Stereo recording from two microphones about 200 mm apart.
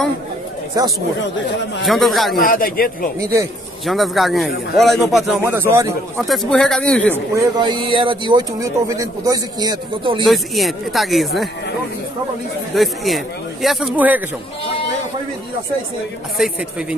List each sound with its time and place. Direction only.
0.8 s a man's voice: 15° right (ahead or behind)
1.9 s speech: centre (ahead or behind)
2.4 s a man's voice: 45° left (ahead or behind)
3.8 s speech: centre (ahead or behind)
5.4 s a man's voice: 10° right (ahead or behind)
6.1 s speech: centre (ahead or behind)
7.3 s a man's voice: 20° right (ahead or behind)
10.2 s speech: centre (ahead or behind)
12.7 s speech: centre (ahead or behind)